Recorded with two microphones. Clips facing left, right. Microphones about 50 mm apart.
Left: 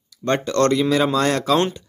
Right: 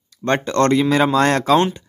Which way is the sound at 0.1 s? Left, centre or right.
Right.